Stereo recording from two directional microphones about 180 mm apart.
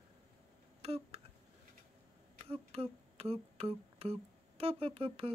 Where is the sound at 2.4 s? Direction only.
35° right (ahead or behind).